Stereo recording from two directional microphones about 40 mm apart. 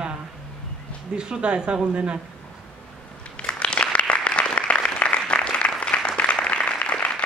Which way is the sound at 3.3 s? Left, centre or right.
Left.